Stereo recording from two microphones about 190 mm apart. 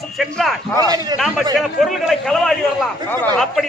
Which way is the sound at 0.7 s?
20° right (ahead or behind).